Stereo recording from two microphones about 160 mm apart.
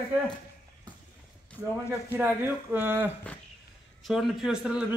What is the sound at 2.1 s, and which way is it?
Speech, 15° right (ahead or behind).